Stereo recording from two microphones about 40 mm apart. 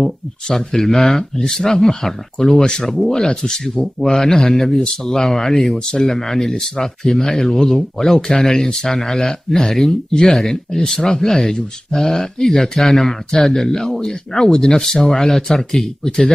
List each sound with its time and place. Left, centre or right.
0.5 s speech: centre
2.9 s speech: centre